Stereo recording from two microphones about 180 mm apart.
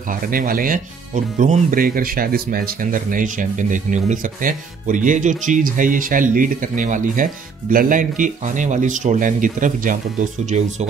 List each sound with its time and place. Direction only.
0.3 s speech: 50° right (ahead or behind)